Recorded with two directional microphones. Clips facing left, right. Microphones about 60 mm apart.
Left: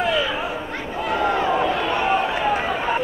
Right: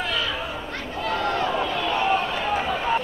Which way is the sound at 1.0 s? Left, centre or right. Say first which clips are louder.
Left 4 dB; centre.